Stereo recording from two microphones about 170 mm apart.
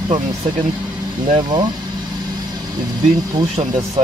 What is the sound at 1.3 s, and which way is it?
Speech, 25° right (ahead or behind).